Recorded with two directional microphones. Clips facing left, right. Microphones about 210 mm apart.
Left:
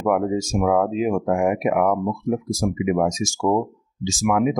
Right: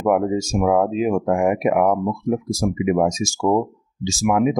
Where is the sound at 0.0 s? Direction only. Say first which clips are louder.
Right 2 dB; 30° right (ahead or behind).